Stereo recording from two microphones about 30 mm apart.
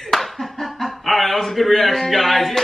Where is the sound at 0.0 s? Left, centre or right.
Centre.